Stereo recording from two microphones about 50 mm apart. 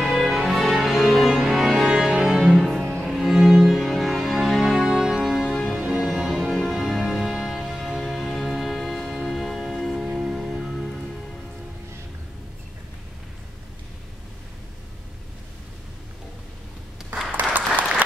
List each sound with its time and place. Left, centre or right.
0.0 s music: centre
2.5 s music: centre
3.2 s music: centre
4.8 s music: centre
17.3 s applause: right